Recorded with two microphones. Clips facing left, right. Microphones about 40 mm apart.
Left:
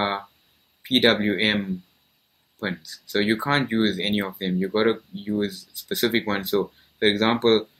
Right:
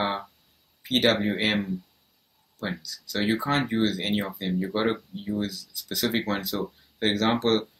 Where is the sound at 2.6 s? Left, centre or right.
Left.